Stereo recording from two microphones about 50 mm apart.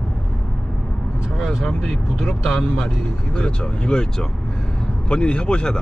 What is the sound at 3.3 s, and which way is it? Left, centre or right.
Speech, centre.